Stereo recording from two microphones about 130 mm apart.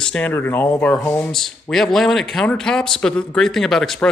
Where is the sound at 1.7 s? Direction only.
Centre (ahead or behind).